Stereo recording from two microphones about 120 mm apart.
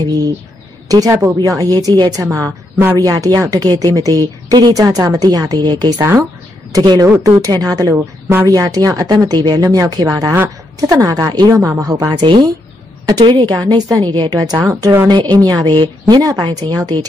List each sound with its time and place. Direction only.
0.8 s a woman's voice: 30° right (ahead or behind)
7.9 s speech: 15° right (ahead or behind)
8.5 s a woman's voice: 30° right (ahead or behind)
15.1 s a woman's voice: 40° right (ahead or behind)